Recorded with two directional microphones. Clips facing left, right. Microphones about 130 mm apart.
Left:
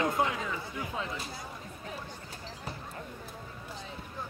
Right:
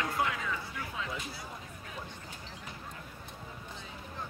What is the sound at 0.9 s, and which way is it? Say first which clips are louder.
Music: left 1 dB; 35° left (ahead or behind).